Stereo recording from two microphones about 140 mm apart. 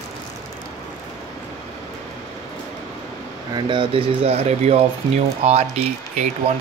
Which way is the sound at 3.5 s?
35° right (ahead or behind).